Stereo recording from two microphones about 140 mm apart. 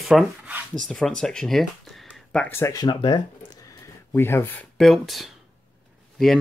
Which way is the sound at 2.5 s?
20° left (ahead or behind).